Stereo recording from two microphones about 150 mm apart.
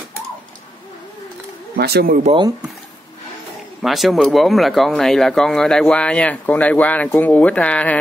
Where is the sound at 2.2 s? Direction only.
35° right (ahead or behind).